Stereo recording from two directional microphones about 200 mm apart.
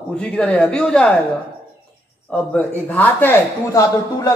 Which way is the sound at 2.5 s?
10° left (ahead or behind).